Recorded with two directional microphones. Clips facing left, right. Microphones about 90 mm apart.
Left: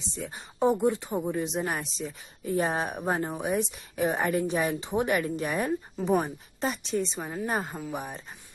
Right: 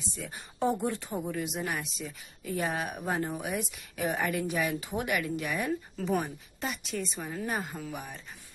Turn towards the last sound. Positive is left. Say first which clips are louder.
# left 3 dB
turn(degrees=35)  # may be behind; listen again after turning